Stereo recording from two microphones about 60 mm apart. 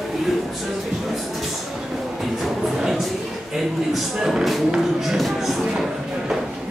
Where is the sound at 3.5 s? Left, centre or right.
Centre.